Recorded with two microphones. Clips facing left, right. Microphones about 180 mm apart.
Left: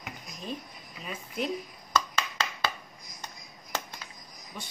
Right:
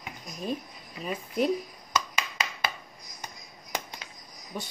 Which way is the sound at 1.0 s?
40° right (ahead or behind).